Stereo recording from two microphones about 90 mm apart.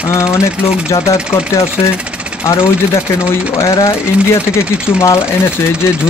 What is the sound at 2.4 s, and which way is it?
Speech, 35° left (ahead or behind).